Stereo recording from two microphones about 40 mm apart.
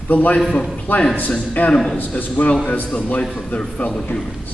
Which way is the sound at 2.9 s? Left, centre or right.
Left.